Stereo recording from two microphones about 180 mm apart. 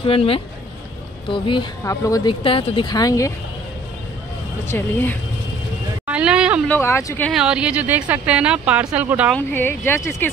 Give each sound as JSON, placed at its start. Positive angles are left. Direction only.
{"t": 0.0, "sound": "speech", "side_deg": 30}
{"t": 4.6, "sound": "speech", "side_deg": 10}
{"t": 6.0, "sound": "a sound", "side_deg": -5}
{"t": 6.7, "sound": "speech", "side_deg": 15}
{"t": 7.2, "sound": "speech", "side_deg": -5}
{"t": 9.5, "sound": "speech", "side_deg": 10}